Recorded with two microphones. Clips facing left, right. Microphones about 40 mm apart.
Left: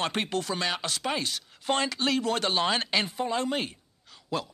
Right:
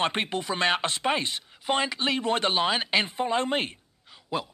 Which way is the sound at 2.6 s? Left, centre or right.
Centre.